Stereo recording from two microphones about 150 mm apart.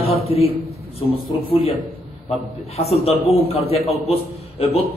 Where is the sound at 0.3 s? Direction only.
40° left (ahead or behind).